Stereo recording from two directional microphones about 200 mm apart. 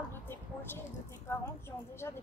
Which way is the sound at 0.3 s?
10° left (ahead or behind).